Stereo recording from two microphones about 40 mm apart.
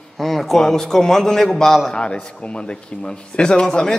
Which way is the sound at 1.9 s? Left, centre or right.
Left.